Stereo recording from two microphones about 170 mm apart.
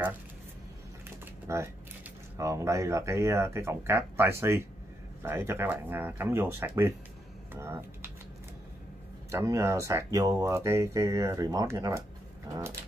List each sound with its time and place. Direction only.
1.5 s speech: 15° right (ahead or behind)
9.3 s speech: 15° right (ahead or behind)